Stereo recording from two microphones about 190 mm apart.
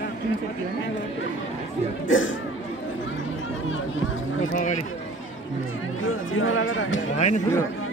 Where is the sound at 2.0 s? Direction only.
90° left.